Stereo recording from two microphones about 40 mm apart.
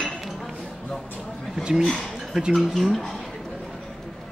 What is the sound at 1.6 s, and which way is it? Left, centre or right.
Speech, right.